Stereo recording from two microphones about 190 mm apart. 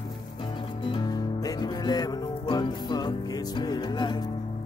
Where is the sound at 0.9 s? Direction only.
20° left (ahead or behind).